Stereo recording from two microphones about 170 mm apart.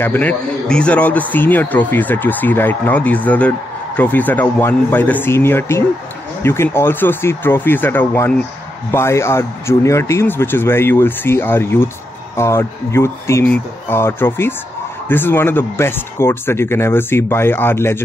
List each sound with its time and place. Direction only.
0.0 s speech: 10° left (ahead or behind)